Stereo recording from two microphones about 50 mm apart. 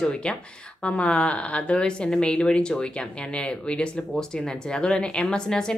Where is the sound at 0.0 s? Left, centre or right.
Left.